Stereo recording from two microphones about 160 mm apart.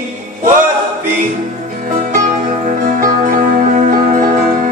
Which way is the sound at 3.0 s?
55° right (ahead or behind).